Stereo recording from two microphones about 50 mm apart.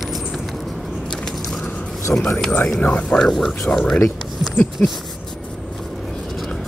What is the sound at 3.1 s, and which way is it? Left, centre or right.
Speech, centre.